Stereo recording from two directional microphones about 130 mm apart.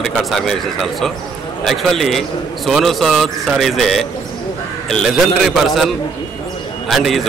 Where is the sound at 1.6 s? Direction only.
Centre (ahead or behind).